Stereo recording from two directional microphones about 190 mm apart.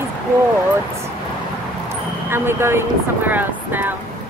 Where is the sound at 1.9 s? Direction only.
10° right (ahead or behind).